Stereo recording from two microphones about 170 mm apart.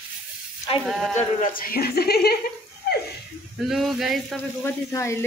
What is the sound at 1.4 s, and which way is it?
Speech, 60° left (ahead or behind).